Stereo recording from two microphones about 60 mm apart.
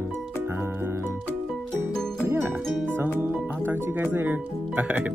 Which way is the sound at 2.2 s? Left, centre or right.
Right.